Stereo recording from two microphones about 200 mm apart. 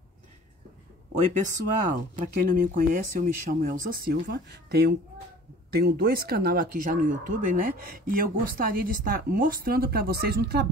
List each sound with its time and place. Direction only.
1.1 s speech: 40° right (ahead or behind)